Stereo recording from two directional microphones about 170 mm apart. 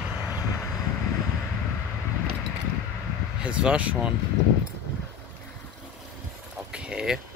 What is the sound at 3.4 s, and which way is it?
Speech, 5° right (ahead or behind).